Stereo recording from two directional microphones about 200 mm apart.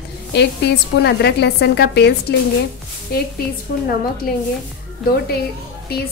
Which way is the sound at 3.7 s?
45° left (ahead or behind).